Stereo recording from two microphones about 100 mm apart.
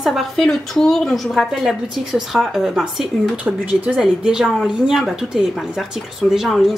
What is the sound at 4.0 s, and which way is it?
Speech, 5° right (ahead or behind).